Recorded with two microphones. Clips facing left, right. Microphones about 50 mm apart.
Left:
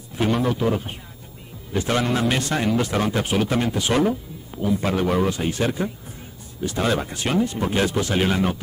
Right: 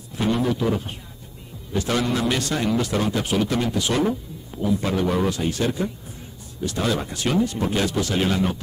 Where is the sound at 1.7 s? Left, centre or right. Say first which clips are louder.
Left 1 dB; left.